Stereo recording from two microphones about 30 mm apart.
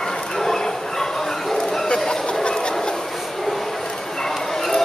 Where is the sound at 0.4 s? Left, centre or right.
Centre.